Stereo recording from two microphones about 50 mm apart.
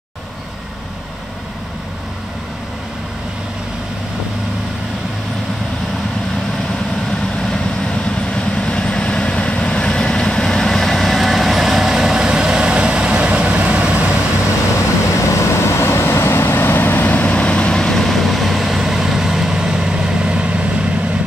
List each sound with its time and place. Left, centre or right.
8.4 s vehicle: centre; by 14.0 s right
15.1 s vehicle: left
17.3 s vehicle: left
17.7 s vehicle: centre; by 20.9 s right